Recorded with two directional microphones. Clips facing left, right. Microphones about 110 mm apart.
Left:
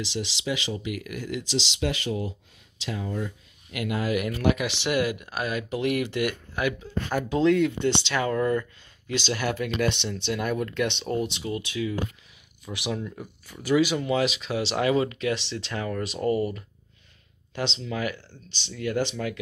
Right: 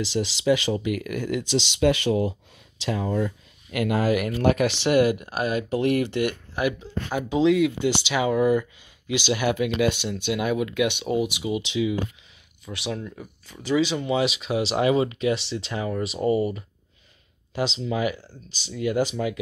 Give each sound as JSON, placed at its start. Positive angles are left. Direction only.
{"t": 0.0, "sound": "speech", "side_deg": -40}
{"t": 2.8, "sound": "speech", "side_deg": -90}
{"t": 3.7, "sound": "speech", "side_deg": -45}
{"t": 7.3, "sound": "speech", "side_deg": -5}
{"t": 11.6, "sound": "speech", "side_deg": -20}
{"t": 12.6, "sound": "speech", "side_deg": 15}
{"t": 12.9, "sound": "speech", "side_deg": 0}
{"t": 13.9, "sound": "speech", "side_deg": -5}
{"t": 14.8, "sound": "speech", "side_deg": -15}